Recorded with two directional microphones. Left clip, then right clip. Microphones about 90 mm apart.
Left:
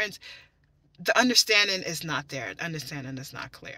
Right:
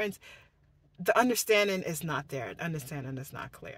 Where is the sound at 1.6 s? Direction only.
55° right (ahead or behind).